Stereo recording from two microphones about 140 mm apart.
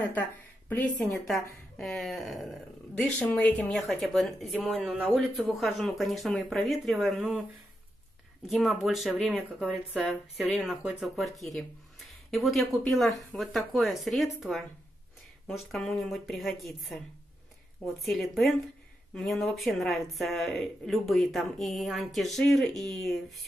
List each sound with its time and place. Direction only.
0.7 s speech: 10° left (ahead or behind)
8.5 s speech: centre (ahead or behind)